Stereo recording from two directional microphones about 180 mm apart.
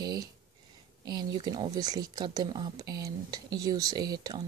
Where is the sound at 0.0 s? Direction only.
20° right (ahead or behind).